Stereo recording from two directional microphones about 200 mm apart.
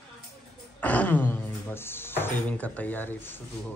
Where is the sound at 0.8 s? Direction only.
5° left (ahead or behind).